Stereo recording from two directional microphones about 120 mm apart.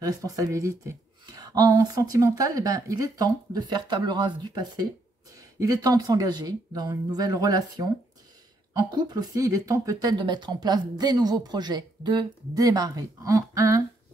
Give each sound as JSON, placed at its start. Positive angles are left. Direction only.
{"t": 0.0, "sound": "speech", "side_deg": -25}
{"t": 10.1, "sound": "speech", "side_deg": -40}